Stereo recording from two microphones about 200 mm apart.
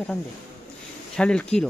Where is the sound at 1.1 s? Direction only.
5° left (ahead or behind).